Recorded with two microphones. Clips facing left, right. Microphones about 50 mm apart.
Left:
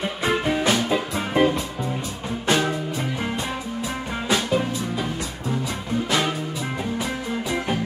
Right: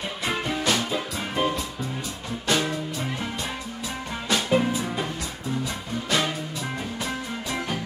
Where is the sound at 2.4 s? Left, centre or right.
Left.